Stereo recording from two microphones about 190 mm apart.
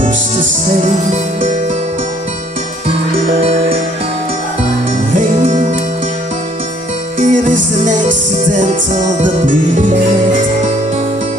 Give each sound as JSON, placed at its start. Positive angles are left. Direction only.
{"t": 3.3, "sound": "music", "side_deg": -30}
{"t": 5.1, "sound": "music", "side_deg": -40}
{"t": 7.2, "sound": "music", "side_deg": -40}